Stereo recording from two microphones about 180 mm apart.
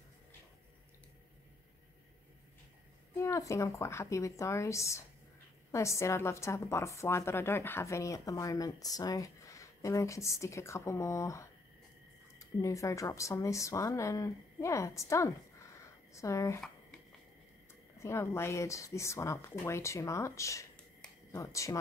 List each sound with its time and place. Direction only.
3.2 s a woman's voice: 15° left (ahead or behind)
17.9 s a woman's voice: 15° left (ahead or behind)